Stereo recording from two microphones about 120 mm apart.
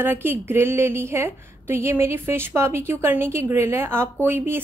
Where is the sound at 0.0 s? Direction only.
20° right (ahead or behind).